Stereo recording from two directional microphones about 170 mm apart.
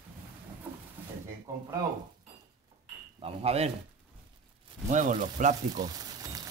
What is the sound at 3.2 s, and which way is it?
Speech, 35° right (ahead or behind).